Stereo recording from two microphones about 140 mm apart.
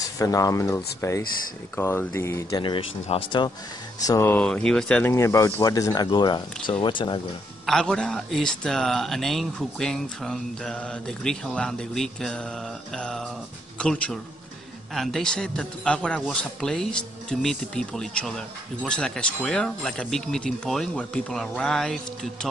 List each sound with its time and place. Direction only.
0.0 s speech: 25° left (ahead or behind)
2.5 s speech: 35° left (ahead or behind)
4.3 s speech: 10° left (ahead or behind); by 7.2 s 35° left (ahead or behind)
7.6 s speech: 5° left (ahead or behind)